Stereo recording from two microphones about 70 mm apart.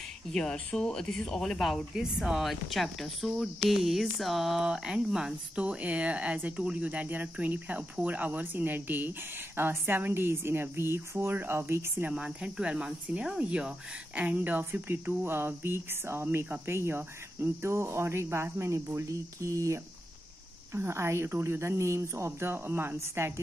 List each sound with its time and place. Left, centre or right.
0.3 s speech: centre
5.6 s cricket: centre
9.6 s speech: right
12.1 s speech: centre; by 19.8 s right
20.7 s speech: right